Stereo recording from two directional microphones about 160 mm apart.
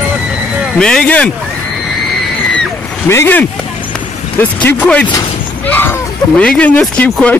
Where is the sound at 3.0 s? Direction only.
15° left (ahead or behind).